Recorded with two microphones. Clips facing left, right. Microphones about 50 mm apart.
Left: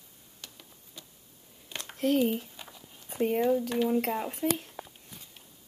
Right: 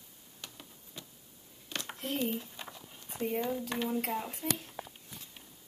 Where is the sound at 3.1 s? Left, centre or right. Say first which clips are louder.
Left 6 dB; left.